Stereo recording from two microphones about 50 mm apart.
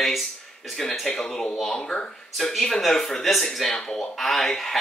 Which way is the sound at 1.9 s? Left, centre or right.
Centre.